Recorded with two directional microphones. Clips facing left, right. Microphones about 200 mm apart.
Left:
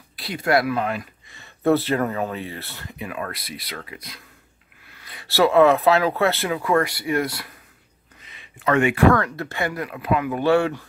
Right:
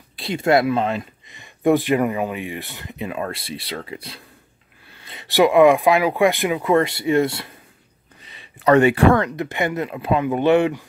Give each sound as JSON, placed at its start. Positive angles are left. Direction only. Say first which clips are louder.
{"t": 0.1, "sound": "speech", "louder": "right 3 dB", "side_deg": -25}
{"t": 8.2, "sound": "a sound", "louder": "right 3 dB", "side_deg": -35}
{"t": 9.1, "sound": "speech", "louder": "right 2 dB", "side_deg": -20}